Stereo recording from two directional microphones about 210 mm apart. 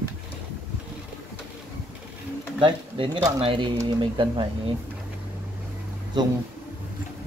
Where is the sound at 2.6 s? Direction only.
20° right (ahead or behind).